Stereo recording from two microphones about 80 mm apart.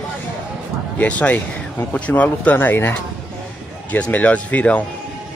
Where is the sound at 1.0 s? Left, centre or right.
Centre.